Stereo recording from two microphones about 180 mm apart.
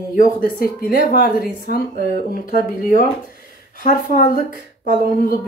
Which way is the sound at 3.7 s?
50° left (ahead or behind).